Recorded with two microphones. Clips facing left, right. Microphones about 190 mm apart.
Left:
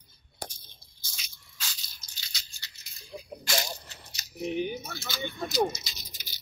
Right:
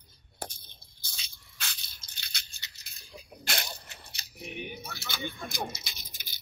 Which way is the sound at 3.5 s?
60° right (ahead or behind).